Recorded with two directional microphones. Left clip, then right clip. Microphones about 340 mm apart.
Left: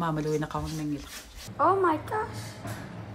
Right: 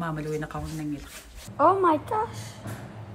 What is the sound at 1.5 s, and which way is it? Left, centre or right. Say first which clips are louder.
Speech: right 3 dB; right.